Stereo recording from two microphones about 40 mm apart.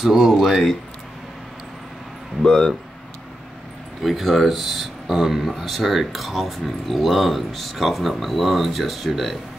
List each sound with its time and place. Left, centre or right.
0.0 s speech: centre
2.4 s speech: centre
4.0 s speech: centre